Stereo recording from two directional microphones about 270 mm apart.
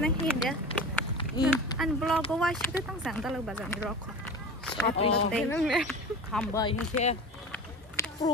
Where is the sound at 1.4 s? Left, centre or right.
Centre.